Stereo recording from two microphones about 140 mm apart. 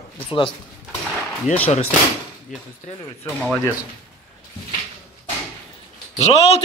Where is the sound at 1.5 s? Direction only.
55° left (ahead or behind).